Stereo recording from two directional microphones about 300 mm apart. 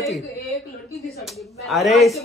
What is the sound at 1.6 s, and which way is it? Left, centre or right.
Speech, centre.